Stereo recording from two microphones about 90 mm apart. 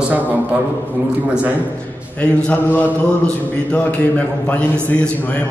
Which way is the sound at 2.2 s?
10° left (ahead or behind).